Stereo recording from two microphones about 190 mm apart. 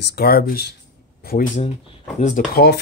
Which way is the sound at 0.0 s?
55° left (ahead or behind).